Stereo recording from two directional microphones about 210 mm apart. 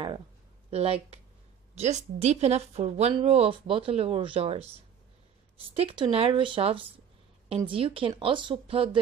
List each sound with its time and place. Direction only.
0.7 s speech: 30° right (ahead or behind)
5.8 s speech: 25° right (ahead or behind)